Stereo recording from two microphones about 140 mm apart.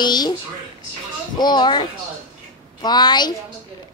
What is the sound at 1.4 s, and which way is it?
A child's voice, 30° left (ahead or behind).